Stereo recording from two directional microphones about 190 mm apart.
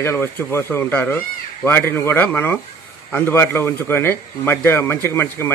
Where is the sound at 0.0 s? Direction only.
15° left (ahead or behind).